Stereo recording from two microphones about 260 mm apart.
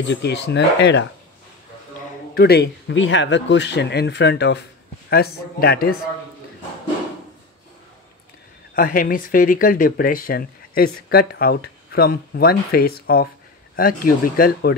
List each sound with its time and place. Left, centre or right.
0.0 s speech: left
2.3 s speech: left
8.7 s speech: left